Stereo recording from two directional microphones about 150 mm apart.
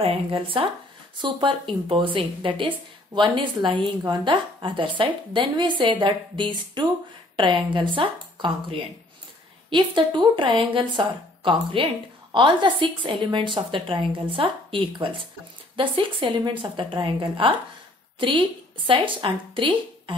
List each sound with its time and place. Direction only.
0.0 s a woman's voice: 35° right (ahead or behind)
18.9 s a woman's voice: 35° right (ahead or behind)